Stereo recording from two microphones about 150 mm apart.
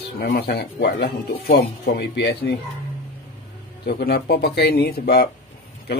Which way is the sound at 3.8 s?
90° left.